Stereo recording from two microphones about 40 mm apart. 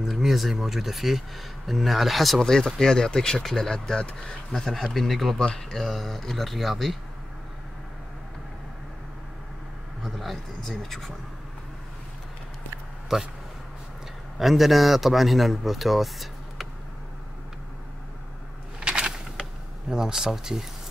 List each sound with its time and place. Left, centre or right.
0.2 s a man's voice: centre
2.4 s speech: centre
5.4 s speech: left
5.8 s a man's voice: centre
10.0 s vehicle: centre
10.8 s a man's voice: centre
13.1 s speech: centre
14.4 s a man's voice: centre
18.8 s a sound: right
19.9 s speech: centre